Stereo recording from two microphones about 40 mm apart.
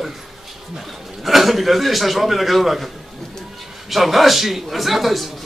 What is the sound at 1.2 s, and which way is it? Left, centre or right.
Speech, centre.